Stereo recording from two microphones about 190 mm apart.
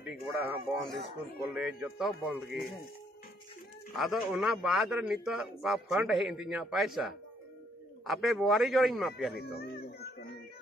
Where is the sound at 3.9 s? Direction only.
Centre (ahead or behind).